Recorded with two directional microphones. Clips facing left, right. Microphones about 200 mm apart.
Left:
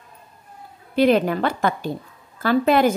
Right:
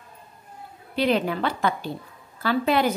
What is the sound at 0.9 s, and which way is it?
Speech, 45° left (ahead or behind).